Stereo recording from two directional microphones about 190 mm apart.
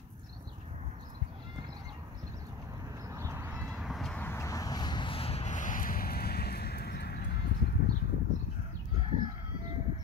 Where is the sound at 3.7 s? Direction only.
Centre (ahead or behind); by 7.8 s 60° left (ahead or behind).